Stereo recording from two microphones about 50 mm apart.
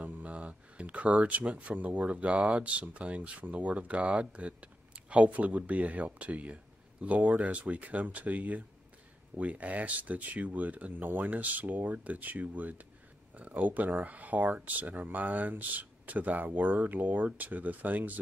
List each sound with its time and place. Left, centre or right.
0.0 s speech: right